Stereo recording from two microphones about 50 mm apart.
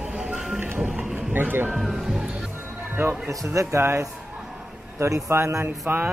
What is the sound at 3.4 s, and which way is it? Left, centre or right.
Speech, right.